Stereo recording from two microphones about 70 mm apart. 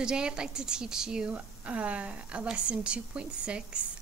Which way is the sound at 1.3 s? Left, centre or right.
Centre.